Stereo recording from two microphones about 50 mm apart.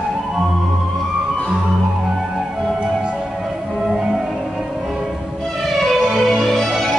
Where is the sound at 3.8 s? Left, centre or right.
Centre.